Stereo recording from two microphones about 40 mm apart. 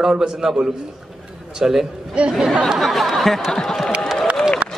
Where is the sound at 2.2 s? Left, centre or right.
Right.